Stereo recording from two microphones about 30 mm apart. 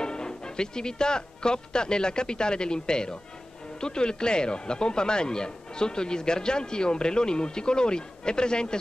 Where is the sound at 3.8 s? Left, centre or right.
Left.